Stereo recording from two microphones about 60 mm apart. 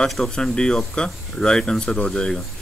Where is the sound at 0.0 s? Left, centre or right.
Centre.